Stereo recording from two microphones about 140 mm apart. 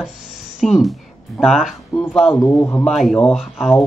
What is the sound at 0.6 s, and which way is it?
Speech, centre (ahead or behind).